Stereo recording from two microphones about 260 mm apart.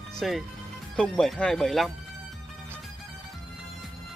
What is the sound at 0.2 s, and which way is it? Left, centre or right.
Speech, centre.